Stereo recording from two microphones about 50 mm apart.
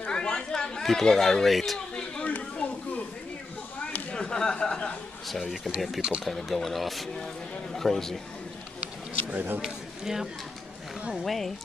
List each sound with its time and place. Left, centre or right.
0.0 s chatter: centre
0.8 s speech: centre
2.2 s a sound: left
4.1 s a sound: centre
5.9 s speech: centre
6.2 s speech: centre
9.3 s speech: right
9.6 s a man's voice: centre
11.2 s speech: centre